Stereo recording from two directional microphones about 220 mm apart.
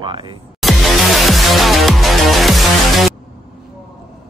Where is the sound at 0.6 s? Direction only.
Centre (ahead or behind).